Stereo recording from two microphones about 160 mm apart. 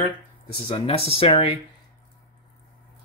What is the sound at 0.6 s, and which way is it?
Speech, 40° left (ahead or behind).